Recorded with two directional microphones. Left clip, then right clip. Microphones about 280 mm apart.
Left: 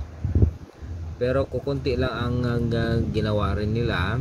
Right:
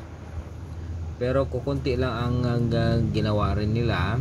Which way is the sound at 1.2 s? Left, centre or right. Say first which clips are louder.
Left 1 dB; centre.